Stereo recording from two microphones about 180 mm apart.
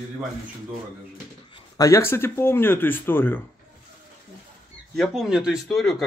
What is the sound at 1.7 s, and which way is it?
Speech, 20° left (ahead or behind).